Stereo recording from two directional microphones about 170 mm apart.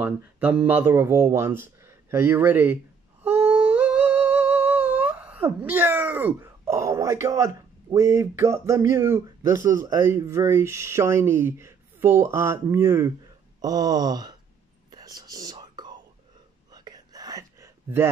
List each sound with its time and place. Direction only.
0.0 s speech: 10° right (ahead or behind)
3.3 s humming: 10° right (ahead or behind)
13.6 s speech: 20° right (ahead or behind)
14.9 s whispering: 25° right (ahead or behind)